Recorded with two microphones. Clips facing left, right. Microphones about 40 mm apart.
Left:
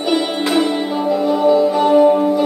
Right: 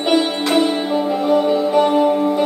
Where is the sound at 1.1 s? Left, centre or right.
Right.